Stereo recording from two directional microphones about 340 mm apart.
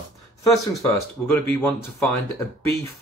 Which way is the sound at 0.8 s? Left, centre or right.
Centre.